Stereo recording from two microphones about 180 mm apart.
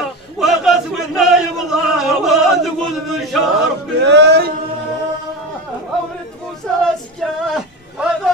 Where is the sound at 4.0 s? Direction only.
70° right (ahead or behind).